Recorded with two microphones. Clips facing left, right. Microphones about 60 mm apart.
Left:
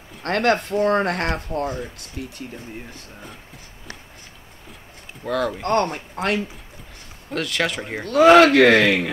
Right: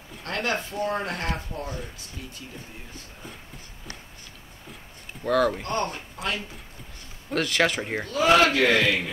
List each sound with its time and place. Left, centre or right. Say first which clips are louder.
0.2 s speech: left 8 dB; left
5.2 s speech: right 1 dB; centre
5.6 s speech: left 7 dB; left
7.2 s speech: even; centre
8.1 s speech: left 8 dB; left